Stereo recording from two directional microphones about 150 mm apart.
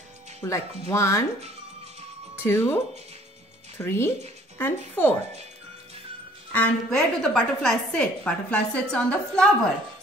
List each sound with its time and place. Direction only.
0.4 s speech: 20° left (ahead or behind)
2.3 s a woman's voice: 15° left (ahead or behind)
6.5 s a woman's voice: 10° left (ahead or behind)